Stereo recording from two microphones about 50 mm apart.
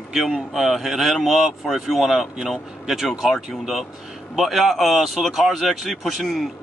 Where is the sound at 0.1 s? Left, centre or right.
Centre.